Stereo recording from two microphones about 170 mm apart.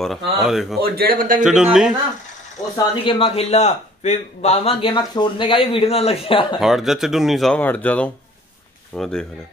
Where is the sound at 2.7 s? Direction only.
30° left (ahead or behind).